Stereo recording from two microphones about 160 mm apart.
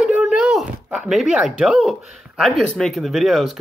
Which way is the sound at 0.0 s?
5° right (ahead or behind).